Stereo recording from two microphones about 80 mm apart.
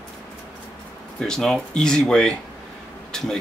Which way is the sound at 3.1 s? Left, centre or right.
Centre.